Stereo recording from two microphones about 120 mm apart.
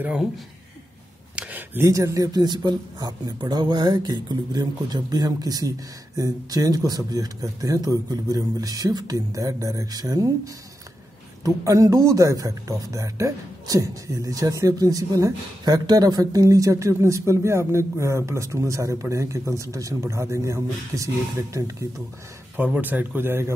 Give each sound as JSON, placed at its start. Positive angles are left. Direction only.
{"t": 0.0, "sound": "speech", "side_deg": -10}
{"t": 1.3, "sound": "a sound", "side_deg": -10}
{"t": 1.9, "sound": "speech", "side_deg": -25}
{"t": 22.6, "sound": "speech", "side_deg": -15}